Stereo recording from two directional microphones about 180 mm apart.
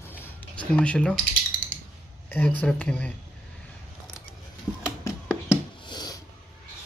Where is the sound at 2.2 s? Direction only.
10° left (ahead or behind).